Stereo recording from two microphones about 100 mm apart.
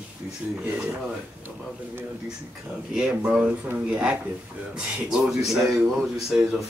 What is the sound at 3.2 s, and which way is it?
A man's voice, 15° right (ahead or behind).